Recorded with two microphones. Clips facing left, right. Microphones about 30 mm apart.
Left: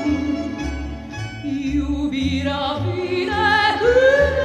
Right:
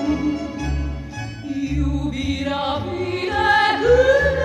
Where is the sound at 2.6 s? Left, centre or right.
Centre.